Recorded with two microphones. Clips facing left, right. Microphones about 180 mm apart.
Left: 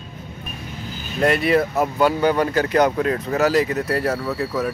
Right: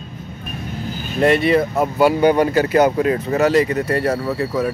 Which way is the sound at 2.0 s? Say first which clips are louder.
Right 5 dB; 10° right (ahead or behind).